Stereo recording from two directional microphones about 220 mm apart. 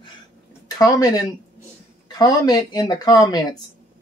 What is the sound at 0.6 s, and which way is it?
Speech, 15° left (ahead or behind).